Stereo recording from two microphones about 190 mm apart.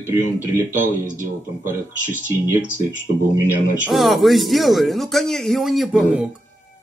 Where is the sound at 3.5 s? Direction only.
5° right (ahead or behind).